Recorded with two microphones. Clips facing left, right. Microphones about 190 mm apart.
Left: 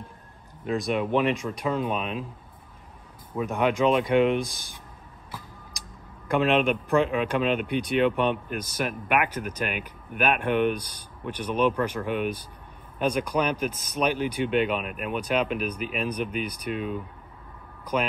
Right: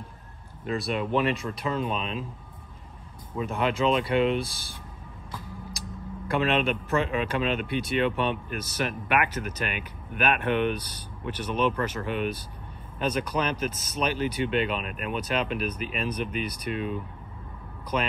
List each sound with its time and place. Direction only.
0.7 s speech: 10° left (ahead or behind)
3.3 s speech: 10° left (ahead or behind)
6.2 s speech: 10° left (ahead or behind)